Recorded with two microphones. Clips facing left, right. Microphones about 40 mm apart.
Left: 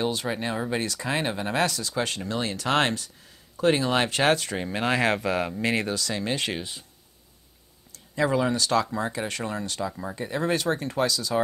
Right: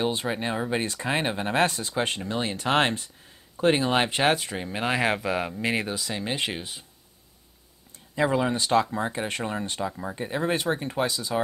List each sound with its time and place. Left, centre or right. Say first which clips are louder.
0.0 s speech: right 1 dB; right
4.6 s speech: left 2 dB; centre
4.8 s speech: left 1 dB; centre
8.2 s speech: even; right